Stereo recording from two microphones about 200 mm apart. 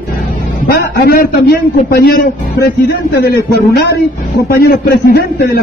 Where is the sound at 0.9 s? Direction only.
50° left (ahead or behind).